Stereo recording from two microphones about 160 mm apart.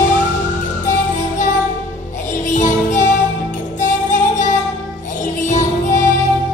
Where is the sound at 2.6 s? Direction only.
50° left (ahead or behind).